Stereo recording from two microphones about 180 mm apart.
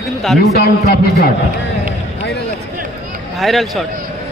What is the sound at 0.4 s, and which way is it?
Speech, 60° left (ahead or behind).